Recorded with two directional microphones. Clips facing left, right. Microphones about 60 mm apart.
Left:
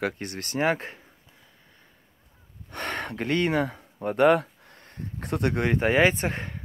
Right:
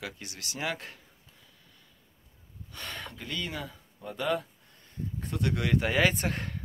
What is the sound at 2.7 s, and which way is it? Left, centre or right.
Speech, left.